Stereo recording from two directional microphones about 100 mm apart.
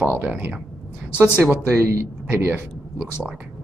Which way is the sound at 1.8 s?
30° right (ahead or behind).